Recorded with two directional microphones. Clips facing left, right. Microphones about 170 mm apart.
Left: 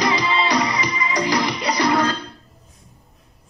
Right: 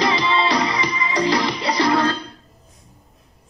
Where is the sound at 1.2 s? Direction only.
25° right (ahead or behind).